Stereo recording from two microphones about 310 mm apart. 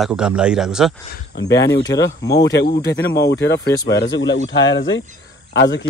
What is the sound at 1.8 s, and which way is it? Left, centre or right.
Speech, centre.